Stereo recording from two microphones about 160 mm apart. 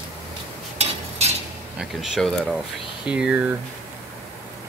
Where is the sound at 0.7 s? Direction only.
40° right (ahead or behind).